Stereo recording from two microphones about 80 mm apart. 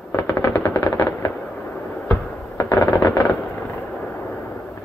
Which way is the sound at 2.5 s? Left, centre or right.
Left.